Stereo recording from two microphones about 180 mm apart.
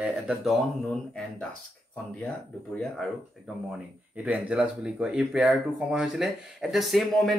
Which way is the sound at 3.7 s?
5° right (ahead or behind).